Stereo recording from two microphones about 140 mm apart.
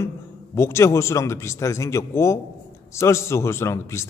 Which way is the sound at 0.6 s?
20° left (ahead or behind).